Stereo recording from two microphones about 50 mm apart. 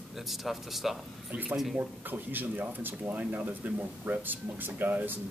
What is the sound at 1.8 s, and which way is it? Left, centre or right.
Speech, right.